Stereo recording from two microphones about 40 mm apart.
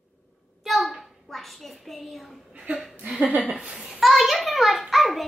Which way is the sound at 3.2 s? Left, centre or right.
Right.